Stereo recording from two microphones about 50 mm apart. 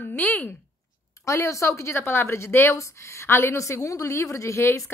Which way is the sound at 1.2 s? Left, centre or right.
Left.